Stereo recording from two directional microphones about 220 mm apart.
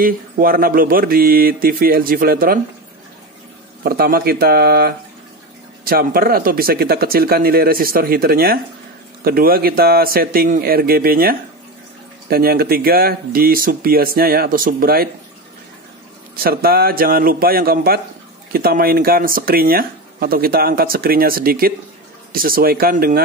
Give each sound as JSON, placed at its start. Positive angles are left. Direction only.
{"t": 0.0, "sound": "speech", "side_deg": -40}
{"t": 3.8, "sound": "speech", "side_deg": -45}
{"t": 16.4, "sound": "speech", "side_deg": -45}